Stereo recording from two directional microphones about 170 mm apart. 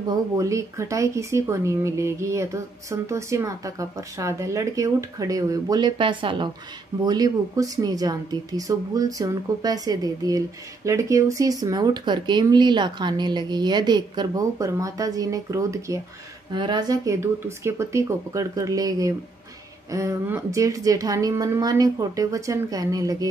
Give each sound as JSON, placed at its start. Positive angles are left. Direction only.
{"t": 0.0, "sound": "a woman's voice", "side_deg": -20}